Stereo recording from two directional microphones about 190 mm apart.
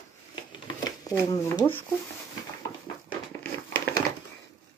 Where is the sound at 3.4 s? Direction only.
10° left (ahead or behind).